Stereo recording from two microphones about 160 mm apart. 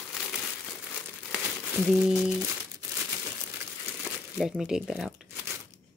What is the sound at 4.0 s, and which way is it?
Speech, centre (ahead or behind).